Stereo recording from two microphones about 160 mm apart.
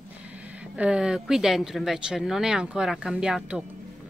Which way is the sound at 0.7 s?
5° right (ahead or behind).